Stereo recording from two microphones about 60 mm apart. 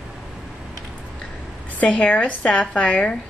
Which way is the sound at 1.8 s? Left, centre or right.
Centre.